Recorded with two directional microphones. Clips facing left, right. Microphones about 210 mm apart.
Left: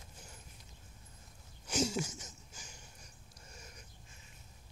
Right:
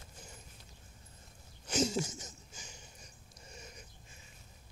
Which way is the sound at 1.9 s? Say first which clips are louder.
Right 2 dB; 30° right (ahead or behind).